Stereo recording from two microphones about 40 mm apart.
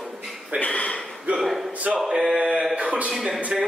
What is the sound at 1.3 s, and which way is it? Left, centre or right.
Speech, centre.